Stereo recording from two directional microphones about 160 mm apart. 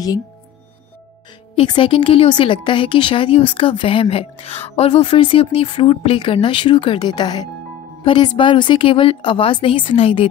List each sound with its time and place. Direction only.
1.7 s a woman's voice: 30° left (ahead or behind)